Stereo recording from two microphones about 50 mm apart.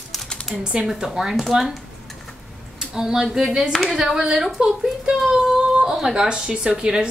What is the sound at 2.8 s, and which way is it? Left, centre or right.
Speech, centre.